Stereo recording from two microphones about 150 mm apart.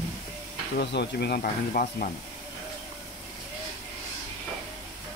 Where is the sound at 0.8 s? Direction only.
90° left.